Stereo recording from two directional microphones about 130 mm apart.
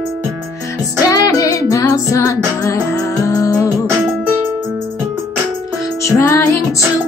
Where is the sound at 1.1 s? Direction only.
25° left (ahead or behind).